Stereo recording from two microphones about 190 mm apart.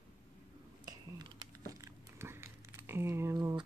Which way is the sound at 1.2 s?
20° right (ahead or behind).